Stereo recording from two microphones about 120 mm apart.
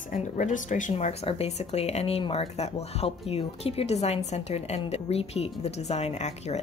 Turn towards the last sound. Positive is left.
turn(degrees=65)  # may be behind; listen again after turning